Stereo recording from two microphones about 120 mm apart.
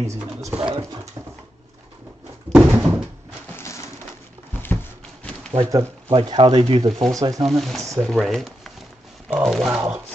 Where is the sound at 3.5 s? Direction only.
25° left (ahead or behind).